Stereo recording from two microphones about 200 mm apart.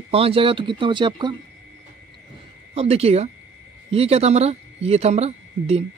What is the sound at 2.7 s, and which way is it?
Speech, 30° right (ahead or behind).